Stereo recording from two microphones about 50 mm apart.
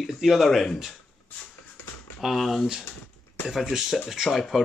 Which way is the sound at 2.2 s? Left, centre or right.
Centre.